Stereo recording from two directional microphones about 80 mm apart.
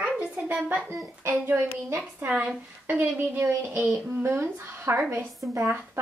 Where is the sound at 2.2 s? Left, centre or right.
Centre.